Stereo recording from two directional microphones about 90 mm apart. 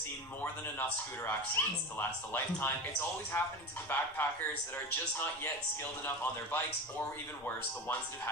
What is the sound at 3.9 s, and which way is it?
Speech, 25° left (ahead or behind).